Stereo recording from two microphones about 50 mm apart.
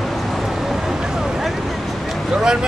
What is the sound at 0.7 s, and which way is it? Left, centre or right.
Vehicle, centre.